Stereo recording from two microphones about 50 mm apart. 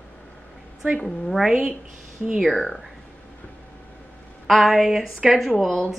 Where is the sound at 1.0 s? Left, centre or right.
Centre.